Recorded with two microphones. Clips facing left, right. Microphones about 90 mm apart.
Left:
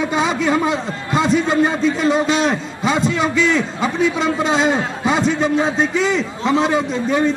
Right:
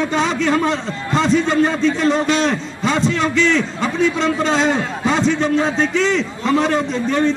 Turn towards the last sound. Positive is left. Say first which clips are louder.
# even
turn(degrees=10)  # may be behind; listen again after turning